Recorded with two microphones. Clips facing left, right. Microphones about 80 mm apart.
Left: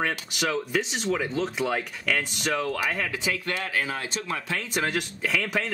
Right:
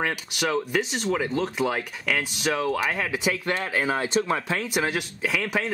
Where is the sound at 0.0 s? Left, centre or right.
Centre.